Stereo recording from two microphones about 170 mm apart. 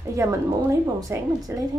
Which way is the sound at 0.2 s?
15° right (ahead or behind).